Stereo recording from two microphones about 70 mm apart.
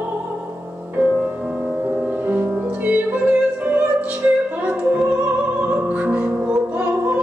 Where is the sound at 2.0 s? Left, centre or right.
Right.